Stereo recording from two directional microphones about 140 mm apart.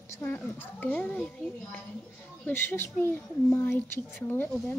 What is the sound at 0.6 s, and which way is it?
Speech, 10° left (ahead or behind).